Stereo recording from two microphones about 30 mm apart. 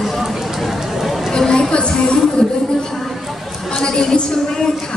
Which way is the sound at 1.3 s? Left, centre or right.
Left.